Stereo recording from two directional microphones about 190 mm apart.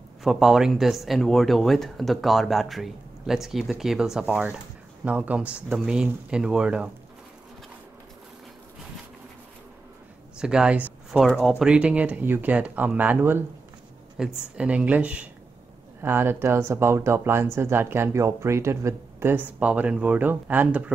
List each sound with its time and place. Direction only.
0.2 s speech: centre (ahead or behind)
10.3 s speech: 5° right (ahead or behind)